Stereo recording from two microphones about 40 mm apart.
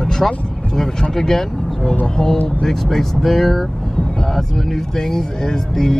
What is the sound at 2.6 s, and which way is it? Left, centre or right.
Speech, centre.